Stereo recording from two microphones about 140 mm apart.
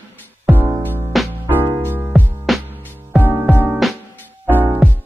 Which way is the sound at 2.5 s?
Centre (ahead or behind).